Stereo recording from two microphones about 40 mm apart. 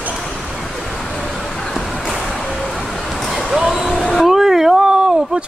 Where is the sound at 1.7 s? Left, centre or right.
Centre.